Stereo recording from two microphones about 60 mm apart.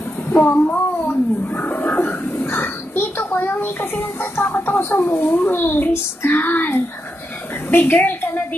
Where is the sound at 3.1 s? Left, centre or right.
Left.